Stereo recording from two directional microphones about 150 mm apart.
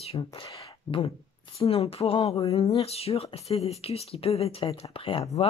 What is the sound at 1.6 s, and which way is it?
Speech, 40° left (ahead or behind).